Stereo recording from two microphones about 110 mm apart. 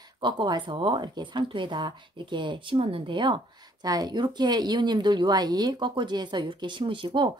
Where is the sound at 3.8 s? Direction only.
35° right (ahead or behind).